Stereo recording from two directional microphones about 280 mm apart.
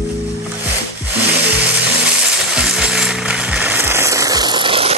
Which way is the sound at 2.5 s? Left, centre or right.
Centre.